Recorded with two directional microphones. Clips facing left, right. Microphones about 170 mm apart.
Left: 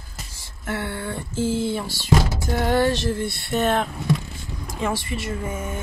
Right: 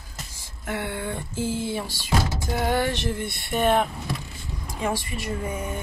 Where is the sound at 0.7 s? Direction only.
15° right (ahead or behind).